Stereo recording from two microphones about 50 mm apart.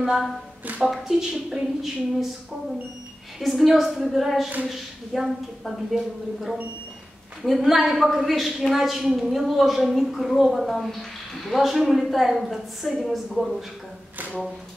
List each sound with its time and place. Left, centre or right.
0.0 s a woman's voice: centre
0.7 s speech: right
1.0 s a woman's voice: centre
3.3 s a woman's voice: centre